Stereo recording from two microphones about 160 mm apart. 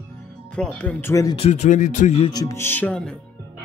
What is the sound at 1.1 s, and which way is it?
Speech, 20° left (ahead or behind).